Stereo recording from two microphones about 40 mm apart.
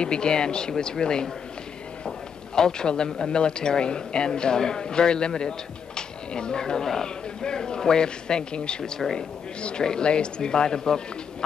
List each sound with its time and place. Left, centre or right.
0.0 s speech: left
2.5 s speech: centre